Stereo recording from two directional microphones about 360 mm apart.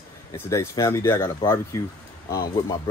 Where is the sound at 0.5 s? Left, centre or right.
Centre.